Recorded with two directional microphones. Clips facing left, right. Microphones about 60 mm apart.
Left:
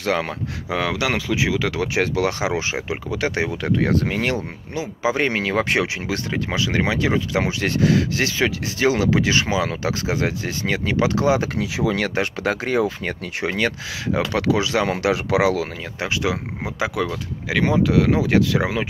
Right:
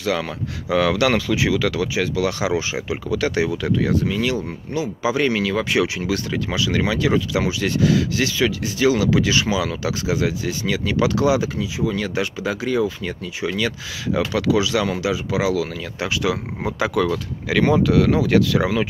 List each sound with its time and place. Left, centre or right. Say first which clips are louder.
0.0 s speech: left 1 dB; left
0.7 s speech: right 5 dB; centre
1.8 s speech: left 1 dB; left
3.9 s speech: even; left
4.7 s speech: right 1 dB; left
11.5 s speech: left 1 dB; left
12.4 s speech: even; left
16.0 s speech: right 1 dB; left